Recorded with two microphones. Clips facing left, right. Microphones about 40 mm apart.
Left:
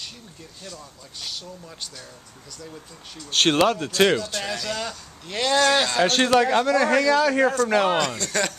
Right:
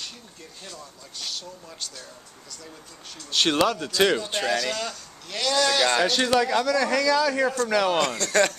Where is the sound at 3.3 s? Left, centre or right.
Left.